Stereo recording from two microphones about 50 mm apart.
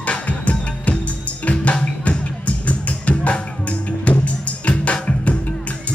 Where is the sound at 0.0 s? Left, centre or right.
Left.